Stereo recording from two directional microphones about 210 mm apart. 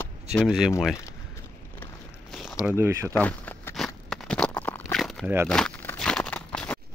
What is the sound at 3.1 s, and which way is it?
Crunch, 10° left (ahead or behind).